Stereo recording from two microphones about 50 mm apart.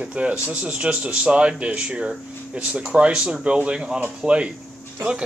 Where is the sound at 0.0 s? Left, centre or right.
Right.